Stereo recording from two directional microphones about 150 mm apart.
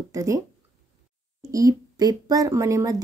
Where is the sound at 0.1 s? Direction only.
20° right (ahead or behind).